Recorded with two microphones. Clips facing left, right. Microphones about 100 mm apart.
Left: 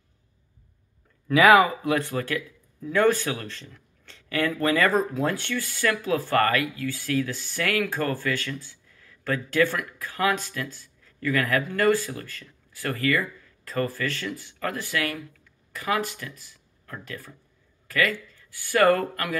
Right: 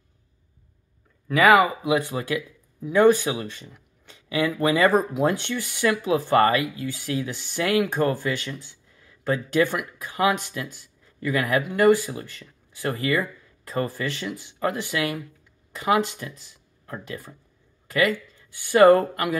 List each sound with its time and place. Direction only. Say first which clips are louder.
1.3 s speech: even; centre (ahead or behind)
1.9 s speech: right 2 dB; 15° right (ahead or behind)
17.8 s a sound: right 3 dB; 20° right (ahead or behind)
18.3 s speech: right 4 dB; 20° right (ahead or behind)